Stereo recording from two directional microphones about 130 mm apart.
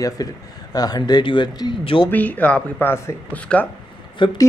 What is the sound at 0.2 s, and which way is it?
Speech, 30° left (ahead or behind).